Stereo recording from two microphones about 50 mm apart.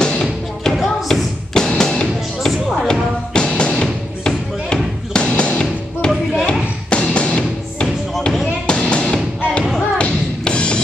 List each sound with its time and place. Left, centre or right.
0.0 s music: centre